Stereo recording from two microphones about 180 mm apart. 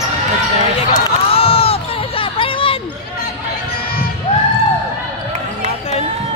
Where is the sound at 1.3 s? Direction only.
30° left (ahead or behind).